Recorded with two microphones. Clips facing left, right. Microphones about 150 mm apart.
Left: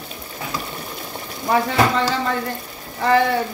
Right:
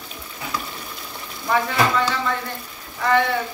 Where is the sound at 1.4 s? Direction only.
35° left (ahead or behind).